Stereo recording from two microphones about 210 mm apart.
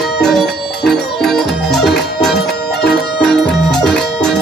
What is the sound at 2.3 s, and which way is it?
Music, 50° left (ahead or behind).